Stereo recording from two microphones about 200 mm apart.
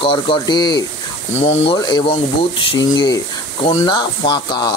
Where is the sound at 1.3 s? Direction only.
35° left (ahead or behind).